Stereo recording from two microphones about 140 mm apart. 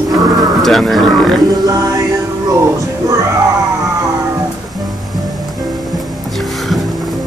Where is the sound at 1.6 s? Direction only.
25° right (ahead or behind).